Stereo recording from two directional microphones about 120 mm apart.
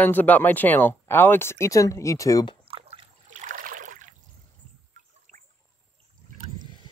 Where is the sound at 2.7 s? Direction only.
50° right (ahead or behind).